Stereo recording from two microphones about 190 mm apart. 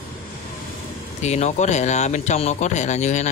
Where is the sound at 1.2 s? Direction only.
35° left (ahead or behind).